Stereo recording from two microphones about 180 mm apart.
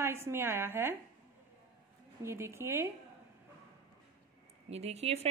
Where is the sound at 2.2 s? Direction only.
15° right (ahead or behind).